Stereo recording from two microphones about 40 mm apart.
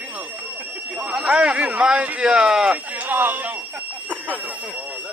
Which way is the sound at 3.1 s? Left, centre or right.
Right.